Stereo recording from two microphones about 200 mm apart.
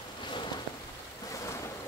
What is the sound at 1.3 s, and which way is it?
Ocean, 15° left (ahead or behind).